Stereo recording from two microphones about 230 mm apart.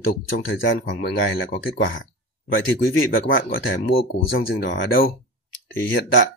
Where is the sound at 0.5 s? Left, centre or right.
Left.